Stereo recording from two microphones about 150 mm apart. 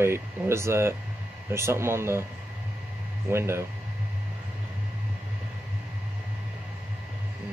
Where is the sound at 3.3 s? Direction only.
15° right (ahead or behind).